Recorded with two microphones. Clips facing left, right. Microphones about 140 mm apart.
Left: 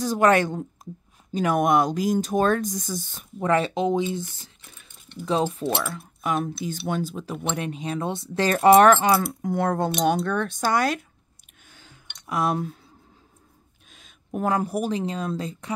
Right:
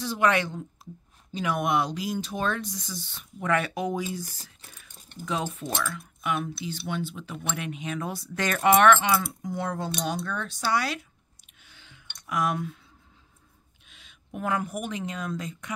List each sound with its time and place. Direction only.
0.0 s speech: 45° left (ahead or behind); by 4.5 s 25° left (ahead or behind)
4.6 s a sound: 35° right (ahead or behind)
5.2 s speech: 35° left (ahead or behind); by 11.0 s 50° left (ahead or behind)
11.6 s a sound: 45° left (ahead or behind)
12.3 s speech: 35° left (ahead or behind)
13.8 s a woman's voice: 40° left (ahead or behind)